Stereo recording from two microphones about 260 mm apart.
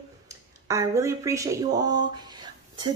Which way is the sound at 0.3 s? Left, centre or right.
Centre.